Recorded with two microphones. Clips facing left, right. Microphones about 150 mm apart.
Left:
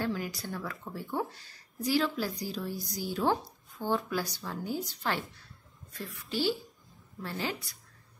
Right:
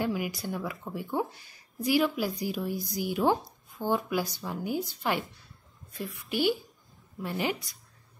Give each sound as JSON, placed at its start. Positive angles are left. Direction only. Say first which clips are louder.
{"t": 0.0, "sound": "speech", "louder": "right 3 dB", "side_deg": -10}